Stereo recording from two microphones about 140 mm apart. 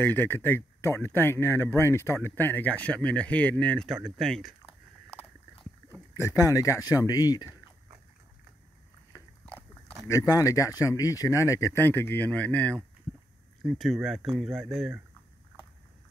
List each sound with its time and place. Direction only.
0.0 s speech: 15° left (ahead or behind)
6.1 s speech: 20° left (ahead or behind)
9.1 s biting: 15° right (ahead or behind)
10.0 s speech: 25° left (ahead or behind)
13.6 s speech: centre (ahead or behind)